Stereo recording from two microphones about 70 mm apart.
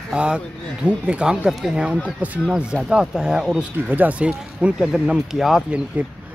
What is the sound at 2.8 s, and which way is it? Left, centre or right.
Speech, centre.